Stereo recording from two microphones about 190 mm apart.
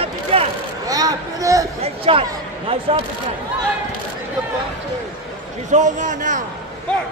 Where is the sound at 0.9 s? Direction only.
20° right (ahead or behind).